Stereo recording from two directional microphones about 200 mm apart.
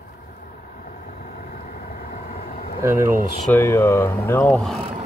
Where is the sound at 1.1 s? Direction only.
40° left (ahead or behind).